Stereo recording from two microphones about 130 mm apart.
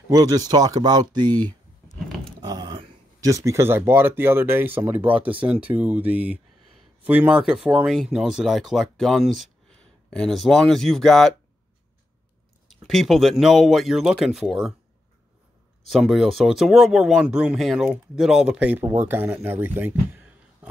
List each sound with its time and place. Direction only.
0.1 s speech: 30° right (ahead or behind)
2.0 s a sound: centre (ahead or behind)
2.4 s a sound: 35° right (ahead or behind)
3.2 s speech: 25° right (ahead or behind); by 11.3 s 5° left (ahead or behind)
12.6 s speech: centre (ahead or behind)
15.9 s speech: centre (ahead or behind)